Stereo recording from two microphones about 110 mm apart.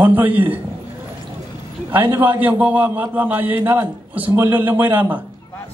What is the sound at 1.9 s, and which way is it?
A man's voice, 20° right (ahead or behind).